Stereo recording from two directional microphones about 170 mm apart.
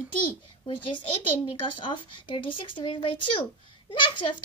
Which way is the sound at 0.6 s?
30° left (ahead or behind).